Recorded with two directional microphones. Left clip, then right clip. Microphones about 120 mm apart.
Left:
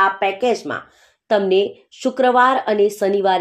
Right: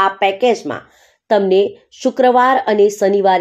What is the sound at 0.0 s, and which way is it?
Speech, 30° right (ahead or behind).